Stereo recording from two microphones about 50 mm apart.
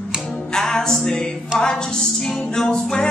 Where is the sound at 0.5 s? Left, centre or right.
Centre.